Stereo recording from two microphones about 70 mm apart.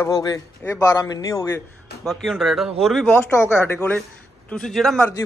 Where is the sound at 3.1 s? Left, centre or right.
Left.